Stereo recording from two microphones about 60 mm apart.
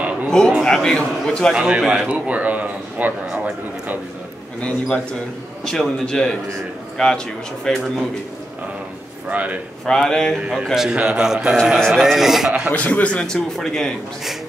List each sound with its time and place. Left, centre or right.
0.3 s a man's voice: centre
1.5 s a man's voice: centre
4.6 s a man's voice: centre
9.3 s a man's voice: right
9.8 s a man's voice: centre
10.5 s a man's voice: centre
11.9 s speech: centre
12.7 s a man's voice: left
13.6 s a man's voice: centre